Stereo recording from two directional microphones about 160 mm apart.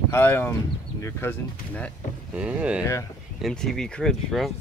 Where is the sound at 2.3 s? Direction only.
10° right (ahead or behind).